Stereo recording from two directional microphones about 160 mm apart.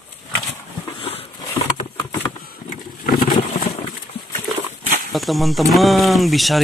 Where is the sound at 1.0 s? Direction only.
35° left (ahead or behind).